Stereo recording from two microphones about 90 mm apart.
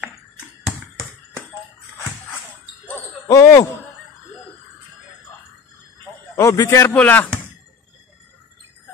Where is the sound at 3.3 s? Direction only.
30° left (ahead or behind).